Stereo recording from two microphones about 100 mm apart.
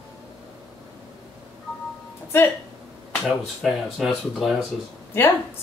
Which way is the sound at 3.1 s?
Centre (ahead or behind).